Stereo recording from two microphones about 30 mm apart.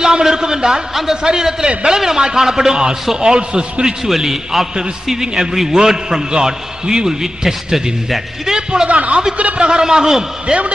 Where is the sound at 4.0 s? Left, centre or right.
Centre.